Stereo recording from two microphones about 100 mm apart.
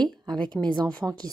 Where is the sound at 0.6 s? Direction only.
10° right (ahead or behind).